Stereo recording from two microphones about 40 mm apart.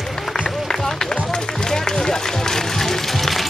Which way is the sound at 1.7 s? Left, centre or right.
Centre.